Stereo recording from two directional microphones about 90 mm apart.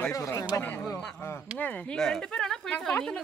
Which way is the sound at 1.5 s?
15° left (ahead or behind).